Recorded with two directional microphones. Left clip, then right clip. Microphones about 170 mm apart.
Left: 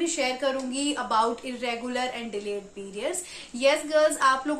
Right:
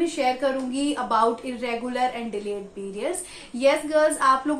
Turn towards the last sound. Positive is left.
turn(degrees=5)  # may be behind; listen again after turning